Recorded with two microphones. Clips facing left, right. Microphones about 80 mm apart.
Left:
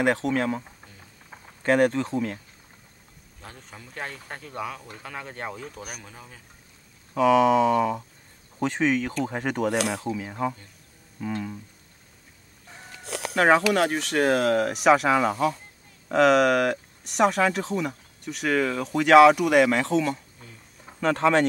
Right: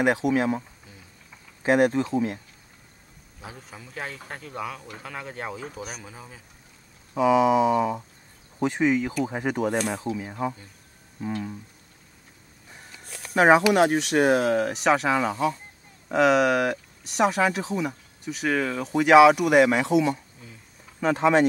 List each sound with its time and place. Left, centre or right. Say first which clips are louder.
0.0 s speech: right 1 dB; centre
1.6 s speech: right 1 dB; centre
3.3 s speech: right 2 dB; centre
9.8 s speech: left 1 dB; left
10.0 s speech: even; centre
13.0 s a sound: left 12 dB; left
13.3 s speech: right 2 dB; centre
14.4 s speech: left 1 dB; centre